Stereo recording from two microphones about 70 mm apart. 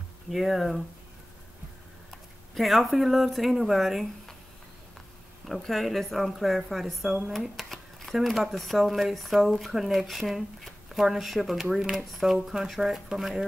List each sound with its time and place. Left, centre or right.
0.3 s speech: centre
2.0 s speech: centre
5.5 s speech: centre